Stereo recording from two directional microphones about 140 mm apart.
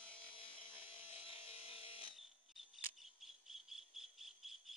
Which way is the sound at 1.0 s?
45° left (ahead or behind).